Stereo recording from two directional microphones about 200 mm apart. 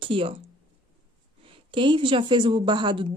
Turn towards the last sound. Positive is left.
turn(degrees=-25)  # may be behind; listen again after turning